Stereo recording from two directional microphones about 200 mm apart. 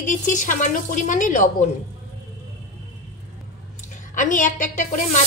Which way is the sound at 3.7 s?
40° left (ahead or behind).